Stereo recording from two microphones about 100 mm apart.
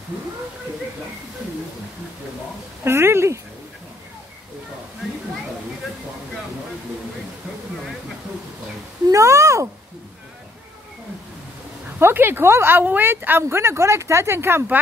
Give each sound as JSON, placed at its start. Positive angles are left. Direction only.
{"t": 2.8, "sound": "speech", "side_deg": -25}
{"t": 9.1, "sound": "a sound", "side_deg": -30}
{"t": 12.0, "sound": "speech", "side_deg": -20}